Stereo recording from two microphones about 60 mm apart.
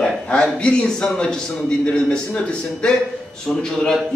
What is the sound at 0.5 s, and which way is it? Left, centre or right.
A man's voice, centre.